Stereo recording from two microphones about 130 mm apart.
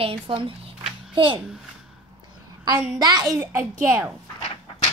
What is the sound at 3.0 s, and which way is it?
A child's voice, 30° right (ahead or behind).